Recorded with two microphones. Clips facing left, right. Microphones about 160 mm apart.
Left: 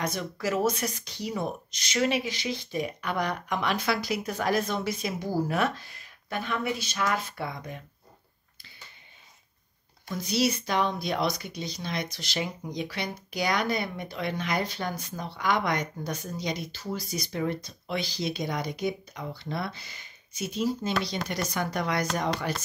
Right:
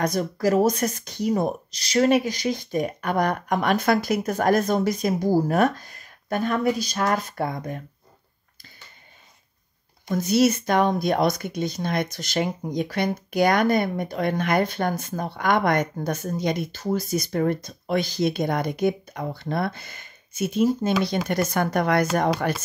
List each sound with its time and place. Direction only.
0.0 s speech: 40° right (ahead or behind)
10.0 s speech: 50° right (ahead or behind)